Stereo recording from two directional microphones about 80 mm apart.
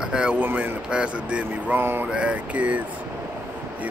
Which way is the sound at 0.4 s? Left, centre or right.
Right.